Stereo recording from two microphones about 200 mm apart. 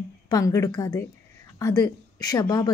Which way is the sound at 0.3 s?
15° left (ahead or behind).